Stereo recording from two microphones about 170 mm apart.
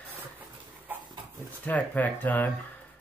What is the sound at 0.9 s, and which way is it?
Dog, 10° right (ahead or behind).